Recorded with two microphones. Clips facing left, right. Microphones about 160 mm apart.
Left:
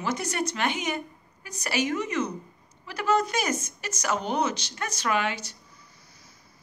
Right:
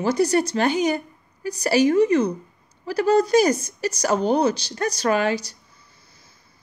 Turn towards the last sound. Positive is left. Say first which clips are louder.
# even
turn(degrees=-30)  # may be behind; listen again after turning